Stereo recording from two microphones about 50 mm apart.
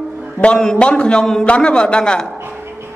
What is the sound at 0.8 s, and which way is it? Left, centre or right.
Speech, centre.